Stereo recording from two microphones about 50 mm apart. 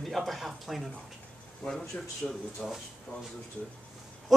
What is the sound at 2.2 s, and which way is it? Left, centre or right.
Speech, centre.